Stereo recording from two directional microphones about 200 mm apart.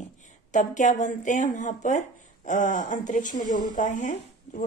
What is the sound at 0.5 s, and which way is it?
A woman's voice, 40° left (ahead or behind).